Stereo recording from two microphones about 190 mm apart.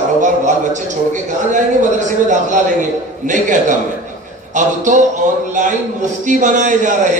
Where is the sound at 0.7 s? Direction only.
40° right (ahead or behind).